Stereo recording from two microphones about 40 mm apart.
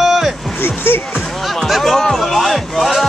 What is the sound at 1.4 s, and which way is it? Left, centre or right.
Speech, centre.